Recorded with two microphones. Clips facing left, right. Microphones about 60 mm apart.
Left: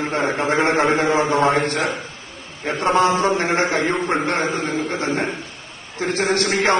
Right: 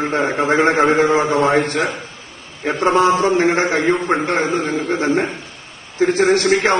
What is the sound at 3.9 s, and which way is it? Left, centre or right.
A man's voice, centre.